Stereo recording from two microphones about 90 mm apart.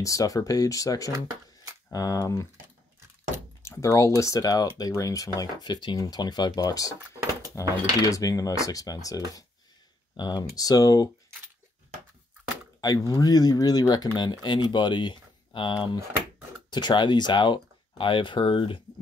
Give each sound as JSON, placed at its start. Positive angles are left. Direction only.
{"t": 0.0, "sound": "speech", "side_deg": 40}
{"t": 3.6, "sound": "speech", "side_deg": 35}
{"t": 8.0, "sound": "speech", "side_deg": 40}
{"t": 12.8, "sound": "speech", "side_deg": 40}